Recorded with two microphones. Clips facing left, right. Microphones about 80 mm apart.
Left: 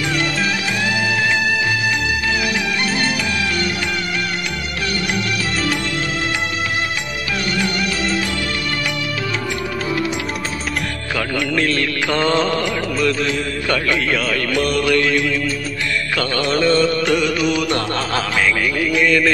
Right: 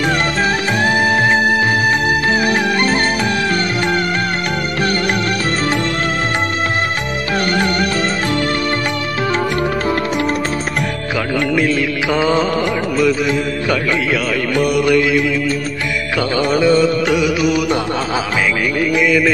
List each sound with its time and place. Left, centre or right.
0.4 s music: right
11.5 s music: centre
12.9 s mantra: centre
13.7 s music: centre